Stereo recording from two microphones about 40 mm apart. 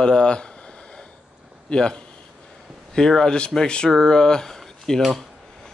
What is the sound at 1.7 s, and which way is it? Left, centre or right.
Speech, left.